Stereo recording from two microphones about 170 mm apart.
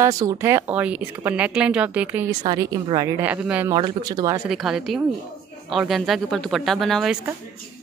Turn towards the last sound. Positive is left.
turn(degrees=0)  # may be behind; listen again after turning